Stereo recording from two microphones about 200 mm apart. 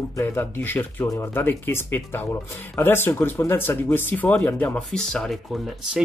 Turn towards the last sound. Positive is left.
turn(degrees=0)  # may be behind; listen again after turning